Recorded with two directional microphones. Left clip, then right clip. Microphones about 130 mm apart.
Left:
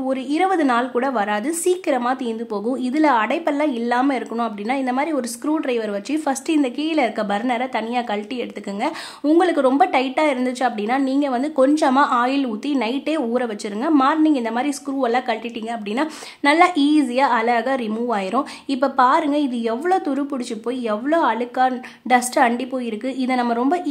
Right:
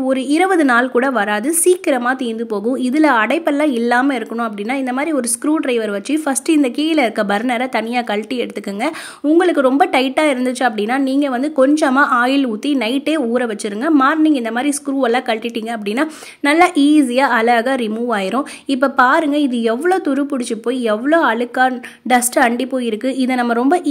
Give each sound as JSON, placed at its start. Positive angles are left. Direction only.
{"t": 0.1, "sound": "a woman's voice", "side_deg": -30}
{"t": 9.4, "sound": "speech", "side_deg": -15}
{"t": 9.9, "sound": "a woman's voice", "side_deg": -25}